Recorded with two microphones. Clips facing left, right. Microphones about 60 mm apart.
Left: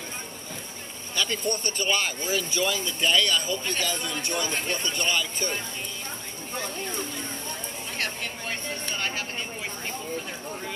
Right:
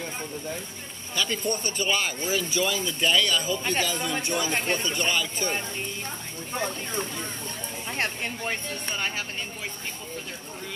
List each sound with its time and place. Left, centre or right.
1.1 s speech: centre
8.0 s speech: right